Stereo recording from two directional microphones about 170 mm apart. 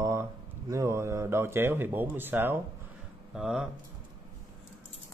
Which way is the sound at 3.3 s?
5° right (ahead or behind).